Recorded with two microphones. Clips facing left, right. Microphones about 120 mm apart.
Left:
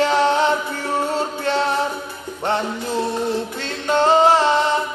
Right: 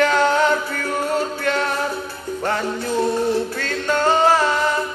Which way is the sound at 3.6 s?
25° left (ahead or behind).